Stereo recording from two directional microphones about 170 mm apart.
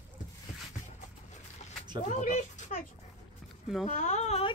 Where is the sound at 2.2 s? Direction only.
45° left (ahead or behind).